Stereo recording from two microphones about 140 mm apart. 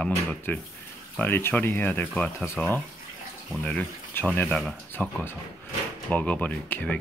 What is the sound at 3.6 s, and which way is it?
Speech, 10° left (ahead or behind).